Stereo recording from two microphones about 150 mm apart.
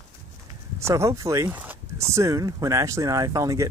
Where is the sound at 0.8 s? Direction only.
20° right (ahead or behind).